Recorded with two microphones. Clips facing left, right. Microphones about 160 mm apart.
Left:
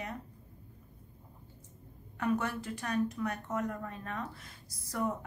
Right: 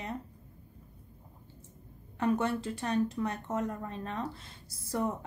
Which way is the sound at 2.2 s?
25° right (ahead or behind).